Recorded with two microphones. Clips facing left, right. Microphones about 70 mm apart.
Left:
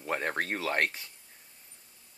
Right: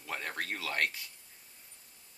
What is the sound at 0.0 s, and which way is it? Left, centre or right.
Speech, left.